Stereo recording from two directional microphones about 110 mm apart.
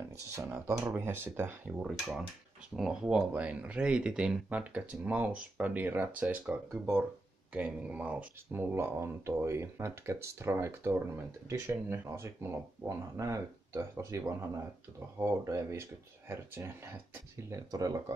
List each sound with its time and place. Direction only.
0.4 s speech: 20° right (ahead or behind)
1.8 s speech: 5° right (ahead or behind); by 17.6 s 20° right (ahead or behind)
17.6 s speech: 35° right (ahead or behind)